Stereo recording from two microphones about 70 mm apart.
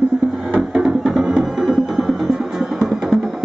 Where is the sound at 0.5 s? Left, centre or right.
Centre.